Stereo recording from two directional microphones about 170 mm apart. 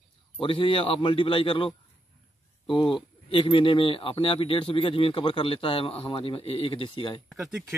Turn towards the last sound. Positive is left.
turn(degrees=0)  # may be behind; listen again after turning